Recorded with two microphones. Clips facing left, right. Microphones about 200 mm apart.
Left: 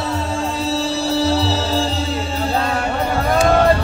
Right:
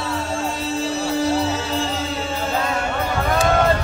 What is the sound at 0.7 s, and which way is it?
Music, 35° left (ahead or behind).